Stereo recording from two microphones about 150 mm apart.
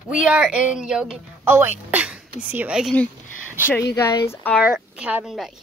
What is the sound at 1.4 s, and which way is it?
Speech, 15° right (ahead or behind).